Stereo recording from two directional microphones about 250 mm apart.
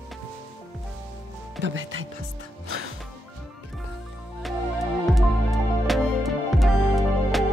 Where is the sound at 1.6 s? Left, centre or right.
Right.